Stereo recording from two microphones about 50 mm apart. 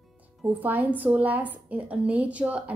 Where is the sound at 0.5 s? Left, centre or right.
Right.